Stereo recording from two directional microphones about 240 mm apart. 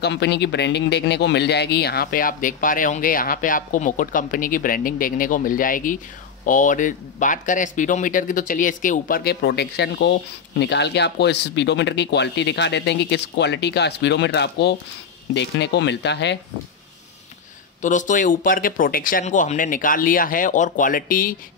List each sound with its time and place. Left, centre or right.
0.0 s speech: left
17.8 s speech: left